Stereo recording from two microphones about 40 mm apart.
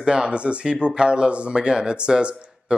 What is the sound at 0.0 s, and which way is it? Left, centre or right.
Speech, right.